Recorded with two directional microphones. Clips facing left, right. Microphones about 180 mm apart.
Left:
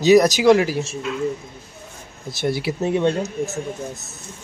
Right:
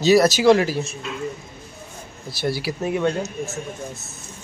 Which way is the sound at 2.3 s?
20° left (ahead or behind).